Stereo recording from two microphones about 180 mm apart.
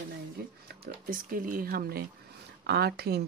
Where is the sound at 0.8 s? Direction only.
50° right (ahead or behind).